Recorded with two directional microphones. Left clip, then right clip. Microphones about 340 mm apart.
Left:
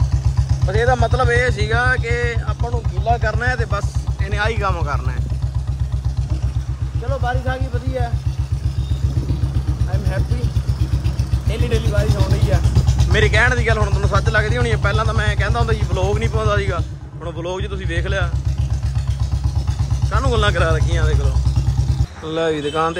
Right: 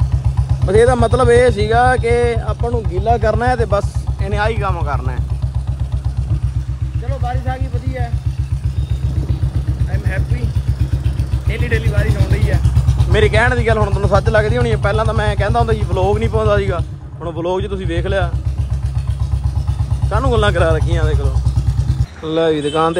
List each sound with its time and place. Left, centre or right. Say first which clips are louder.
0.8 s speech: right 4 dB; right
1.3 s speech: right 7 dB; centre
7.2 s speech: right 1 dB; centre
11.5 s speech: right 2 dB; centre
13.1 s speech: right 2 dB; centre
20.1 s speech: right 3 dB; centre